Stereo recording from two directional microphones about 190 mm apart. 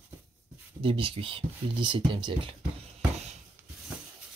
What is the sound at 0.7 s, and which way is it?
Speech, 25° right (ahead or behind).